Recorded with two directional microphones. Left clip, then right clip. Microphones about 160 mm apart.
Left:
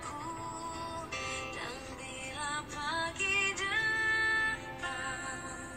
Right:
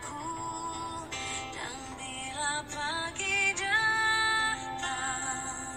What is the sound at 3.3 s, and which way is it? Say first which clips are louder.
Music: right 6 dB; 30° right (ahead or behind).